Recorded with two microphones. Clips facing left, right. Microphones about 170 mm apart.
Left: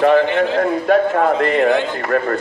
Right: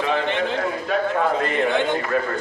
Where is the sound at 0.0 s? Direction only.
60° left (ahead or behind).